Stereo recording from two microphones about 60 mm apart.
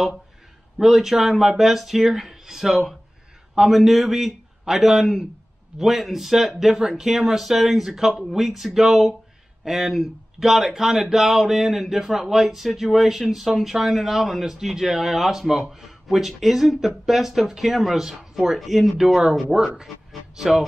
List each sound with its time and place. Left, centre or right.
0.7 s speech: centre